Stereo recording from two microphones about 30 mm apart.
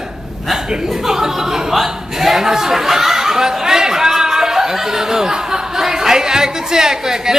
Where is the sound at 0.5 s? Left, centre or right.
Right.